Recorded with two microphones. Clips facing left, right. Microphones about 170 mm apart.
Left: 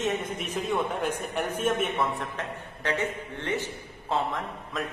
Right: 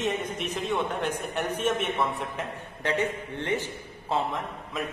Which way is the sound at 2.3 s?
15° right (ahead or behind).